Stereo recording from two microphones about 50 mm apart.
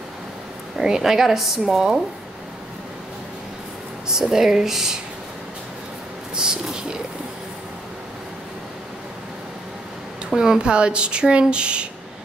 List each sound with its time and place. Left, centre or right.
0.7 s speech: centre
4.1 s speech: centre
6.3 s speech: centre
10.3 s speech: centre